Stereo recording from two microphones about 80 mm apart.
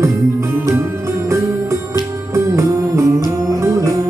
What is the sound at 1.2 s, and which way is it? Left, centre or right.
Music, right.